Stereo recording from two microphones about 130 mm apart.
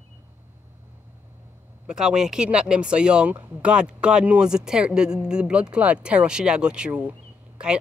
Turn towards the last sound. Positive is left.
turn(degrees=-10)  # may be behind; listen again after turning